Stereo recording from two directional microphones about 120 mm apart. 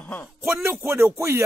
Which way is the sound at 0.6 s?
20° right (ahead or behind).